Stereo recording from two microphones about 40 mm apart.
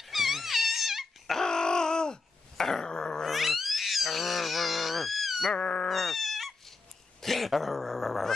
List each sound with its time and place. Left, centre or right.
0.1 s wail: centre
1.4 s a sound: centre
2.5 s dog: centre
2.9 s growling: centre
3.3 s cat: centre
5.6 s goat: left
5.9 s cat: centre